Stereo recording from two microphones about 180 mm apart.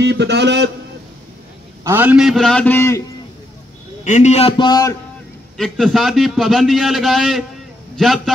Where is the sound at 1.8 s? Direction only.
10° right (ahead or behind); by 3.0 s 15° left (ahead or behind).